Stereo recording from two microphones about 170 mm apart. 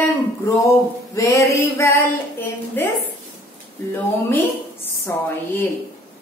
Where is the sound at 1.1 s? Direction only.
15° left (ahead or behind).